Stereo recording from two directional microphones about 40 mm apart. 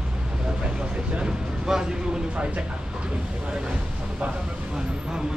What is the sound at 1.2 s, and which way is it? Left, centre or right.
Vehicle, centre.